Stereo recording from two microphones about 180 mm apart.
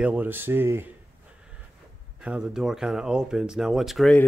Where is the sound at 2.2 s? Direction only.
5° right (ahead or behind).